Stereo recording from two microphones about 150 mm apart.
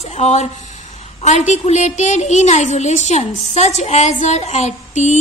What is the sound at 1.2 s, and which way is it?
A woman's voice, 50° left (ahead or behind).